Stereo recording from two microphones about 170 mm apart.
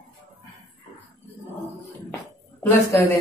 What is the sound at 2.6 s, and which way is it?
Speech, 15° left (ahead or behind).